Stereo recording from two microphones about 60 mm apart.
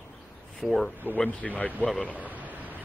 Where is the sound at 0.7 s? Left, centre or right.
Centre.